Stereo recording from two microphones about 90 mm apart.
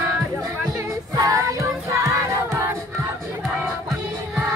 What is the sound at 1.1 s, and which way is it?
Child singing, 40° right (ahead or behind).